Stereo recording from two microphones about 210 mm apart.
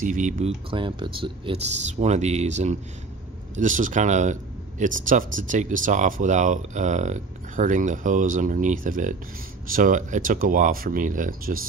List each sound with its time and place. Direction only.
0.0 s speech: 40° right (ahead or behind)
0.7 s speech: 25° right (ahead or behind); by 11.5 s 40° right (ahead or behind)